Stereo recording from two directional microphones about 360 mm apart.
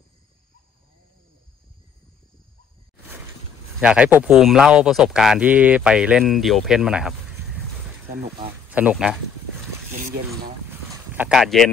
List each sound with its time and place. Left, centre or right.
3.8 s speech: centre
9.9 s speech: right
10.7 s a sound: centre